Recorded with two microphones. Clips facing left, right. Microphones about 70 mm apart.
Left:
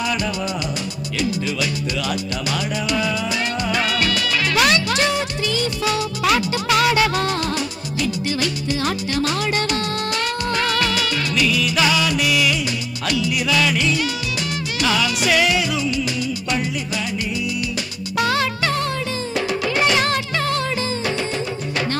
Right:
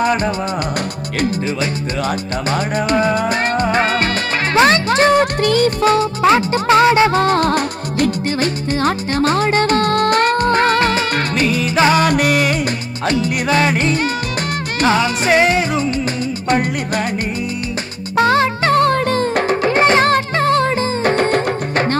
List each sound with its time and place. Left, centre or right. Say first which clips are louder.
0.0 s music: right 6 dB; right
18.1 s music: right 7 dB; right